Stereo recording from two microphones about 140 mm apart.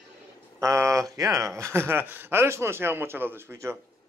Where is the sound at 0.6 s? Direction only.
20° right (ahead or behind).